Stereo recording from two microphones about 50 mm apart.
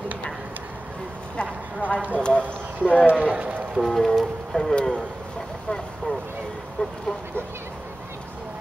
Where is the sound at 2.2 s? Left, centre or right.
Left.